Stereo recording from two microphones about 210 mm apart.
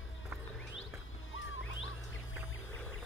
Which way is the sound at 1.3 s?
65° left (ahead or behind).